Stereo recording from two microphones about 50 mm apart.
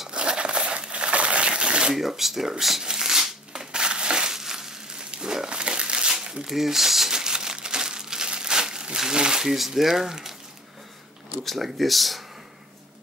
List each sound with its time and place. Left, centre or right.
0.1 s crumpling: centre
2.0 s speech: centre
2.8 s crushing: centre
6.5 s crumpling: centre
11.4 s speech: centre